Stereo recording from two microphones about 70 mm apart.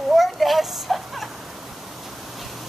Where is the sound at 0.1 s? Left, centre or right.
Centre.